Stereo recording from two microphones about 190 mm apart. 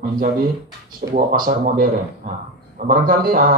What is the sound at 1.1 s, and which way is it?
Speech, 50° right (ahead or behind).